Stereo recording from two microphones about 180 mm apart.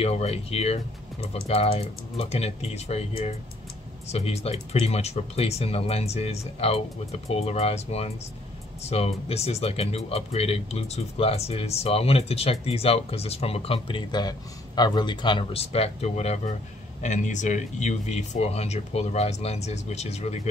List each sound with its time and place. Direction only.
0.0 s speech: 35° left (ahead or behind)